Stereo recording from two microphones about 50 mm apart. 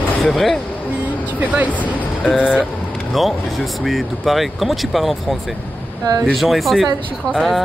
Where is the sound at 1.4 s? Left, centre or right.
Right.